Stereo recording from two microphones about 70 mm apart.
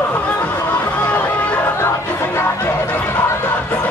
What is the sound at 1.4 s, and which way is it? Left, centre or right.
Chatter, left.